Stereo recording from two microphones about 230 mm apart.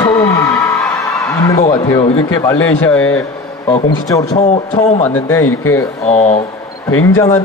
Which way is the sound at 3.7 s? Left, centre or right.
Centre.